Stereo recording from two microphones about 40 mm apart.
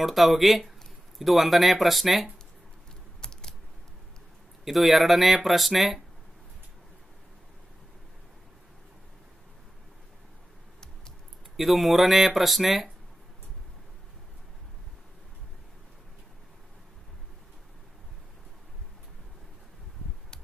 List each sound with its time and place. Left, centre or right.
0.0 s speech: centre
3.2 s typing: centre
4.6 s speech: centre
11.5 s speech: centre